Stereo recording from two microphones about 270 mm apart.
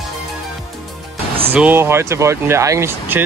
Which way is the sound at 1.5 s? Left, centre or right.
Centre.